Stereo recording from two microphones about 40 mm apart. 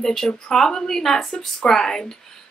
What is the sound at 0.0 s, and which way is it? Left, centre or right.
Speech, centre.